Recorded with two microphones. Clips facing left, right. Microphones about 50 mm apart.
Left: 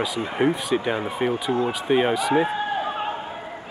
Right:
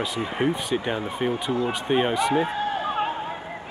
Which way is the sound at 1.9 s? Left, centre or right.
Centre.